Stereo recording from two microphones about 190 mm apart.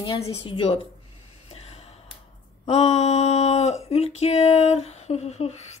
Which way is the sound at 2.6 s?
35° left (ahead or behind).